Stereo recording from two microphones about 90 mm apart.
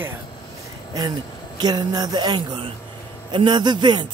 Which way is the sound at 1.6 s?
50° right (ahead or behind).